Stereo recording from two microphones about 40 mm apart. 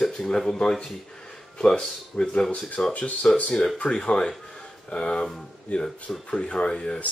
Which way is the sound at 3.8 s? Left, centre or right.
Left.